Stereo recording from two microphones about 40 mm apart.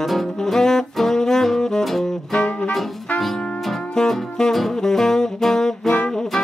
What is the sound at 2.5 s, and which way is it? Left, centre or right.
Music, left.